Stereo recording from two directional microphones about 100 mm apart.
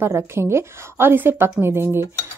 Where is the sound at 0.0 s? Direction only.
25° right (ahead or behind).